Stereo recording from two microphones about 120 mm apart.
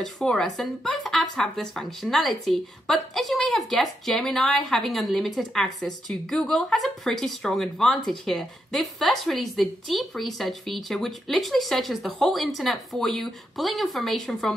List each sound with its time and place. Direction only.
0.0 s speech: 5° left (ahead or behind)